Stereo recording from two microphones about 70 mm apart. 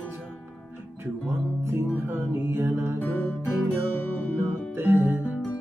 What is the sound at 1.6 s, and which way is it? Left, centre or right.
Music, right.